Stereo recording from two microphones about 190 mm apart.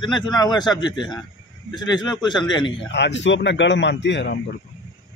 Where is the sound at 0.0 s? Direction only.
25° left (ahead or behind).